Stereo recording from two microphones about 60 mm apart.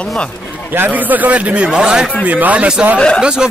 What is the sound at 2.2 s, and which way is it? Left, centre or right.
A man's voice, right.